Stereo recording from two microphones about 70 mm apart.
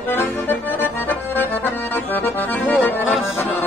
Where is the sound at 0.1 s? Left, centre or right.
Left.